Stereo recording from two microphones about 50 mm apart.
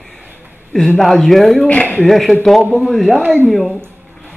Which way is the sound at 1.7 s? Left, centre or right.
Left.